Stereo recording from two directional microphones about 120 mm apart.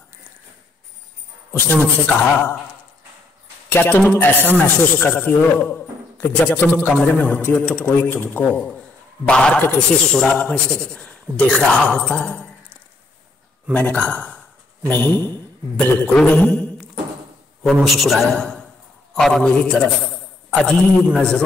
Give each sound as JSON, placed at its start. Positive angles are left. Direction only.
{"t": 1.5, "sound": "a man's voice", "side_deg": 15}
{"t": 3.6, "sound": "a man's voice", "side_deg": 15}
{"t": 13.7, "sound": "a man's voice", "side_deg": 10}